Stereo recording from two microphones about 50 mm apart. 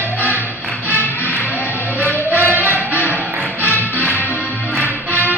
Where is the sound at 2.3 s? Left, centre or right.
Right.